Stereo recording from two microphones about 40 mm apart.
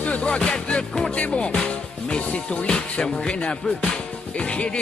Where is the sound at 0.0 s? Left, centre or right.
Left.